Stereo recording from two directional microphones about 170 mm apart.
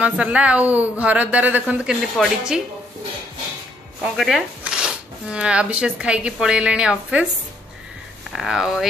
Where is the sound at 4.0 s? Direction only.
Centre (ahead or behind).